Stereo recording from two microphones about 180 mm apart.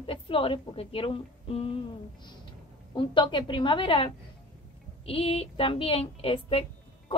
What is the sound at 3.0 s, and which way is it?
A woman's voice, 25° left (ahead or behind).